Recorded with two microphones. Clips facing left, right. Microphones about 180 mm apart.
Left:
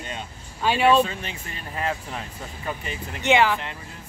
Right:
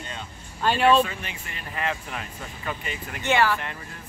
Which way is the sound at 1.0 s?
30° left (ahead or behind).